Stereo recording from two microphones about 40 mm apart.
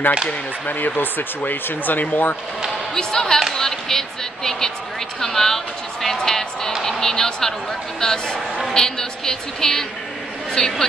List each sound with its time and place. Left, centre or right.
0.3 s speech: left
2.9 s speech: centre